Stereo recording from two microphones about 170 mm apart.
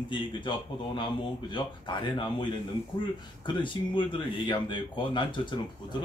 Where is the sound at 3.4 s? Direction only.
30° left (ahead or behind).